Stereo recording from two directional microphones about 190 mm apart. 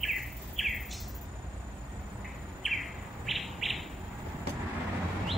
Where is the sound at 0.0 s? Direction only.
Centre (ahead or behind).